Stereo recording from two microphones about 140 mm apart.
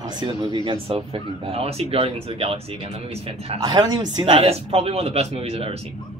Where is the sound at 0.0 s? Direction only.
30° right (ahead or behind).